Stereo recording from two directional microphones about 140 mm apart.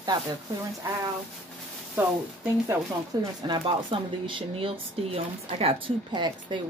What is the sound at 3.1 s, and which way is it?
Speech, 30° right (ahead or behind).